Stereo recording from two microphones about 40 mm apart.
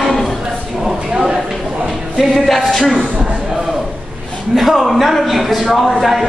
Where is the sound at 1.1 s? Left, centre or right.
Right.